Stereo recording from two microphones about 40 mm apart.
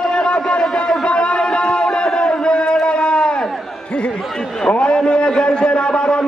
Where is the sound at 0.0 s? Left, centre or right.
Left.